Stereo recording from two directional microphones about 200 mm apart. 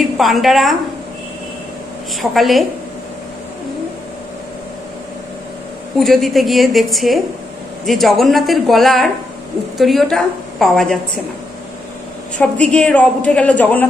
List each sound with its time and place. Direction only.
0.2 s speech: centre (ahead or behind)
2.3 s speech: centre (ahead or behind)
5.9 s speech: centre (ahead or behind)
12.4 s a woman's voice: 5° left (ahead or behind)